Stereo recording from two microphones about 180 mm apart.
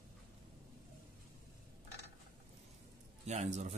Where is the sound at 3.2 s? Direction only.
40° right (ahead or behind).